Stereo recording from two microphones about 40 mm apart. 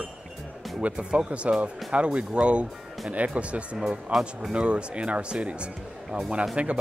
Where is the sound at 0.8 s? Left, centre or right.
Right.